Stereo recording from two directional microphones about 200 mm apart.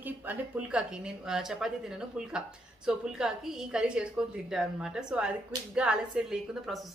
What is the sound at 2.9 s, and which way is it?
A woman's voice, 5° right (ahead or behind).